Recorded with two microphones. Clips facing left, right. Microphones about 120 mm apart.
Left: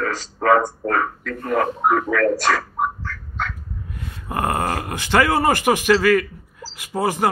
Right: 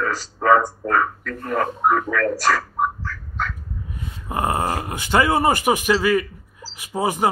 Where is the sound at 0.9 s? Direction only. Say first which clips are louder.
Right 3 dB; 35° left (ahead or behind).